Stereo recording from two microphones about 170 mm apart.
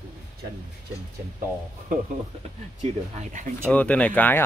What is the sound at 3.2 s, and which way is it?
Speech, 50° right (ahead or behind).